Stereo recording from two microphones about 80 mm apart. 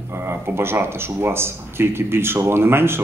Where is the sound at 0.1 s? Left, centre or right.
Right.